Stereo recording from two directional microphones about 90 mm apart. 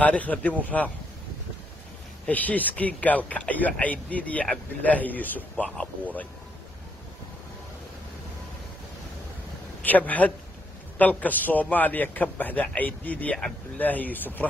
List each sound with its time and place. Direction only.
0.0 s speech: 15° left (ahead or behind)
2.2 s speech: 20° left (ahead or behind)
9.8 s a man's voice: 15° left (ahead or behind)